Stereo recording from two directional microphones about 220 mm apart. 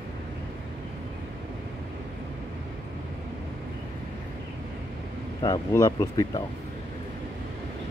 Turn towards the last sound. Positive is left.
turn(degrees=15)  # may be behind; listen again after turning